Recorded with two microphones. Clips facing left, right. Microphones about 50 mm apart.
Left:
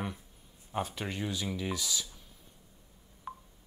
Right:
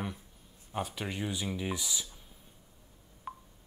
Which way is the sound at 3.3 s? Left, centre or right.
Centre.